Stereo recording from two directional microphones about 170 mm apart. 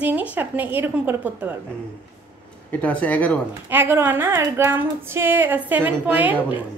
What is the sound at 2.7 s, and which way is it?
Speech, 10° left (ahead or behind).